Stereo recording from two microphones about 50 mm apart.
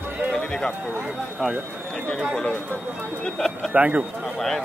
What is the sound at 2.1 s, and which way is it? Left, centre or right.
Speech, centre.